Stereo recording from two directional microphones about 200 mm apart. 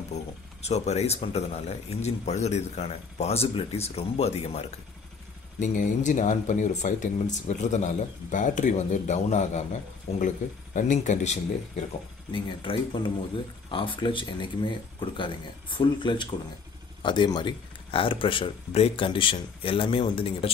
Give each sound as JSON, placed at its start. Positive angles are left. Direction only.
{"t": 0.1, "sound": "speech", "side_deg": 35}
{"t": 12.3, "sound": "speech", "side_deg": 25}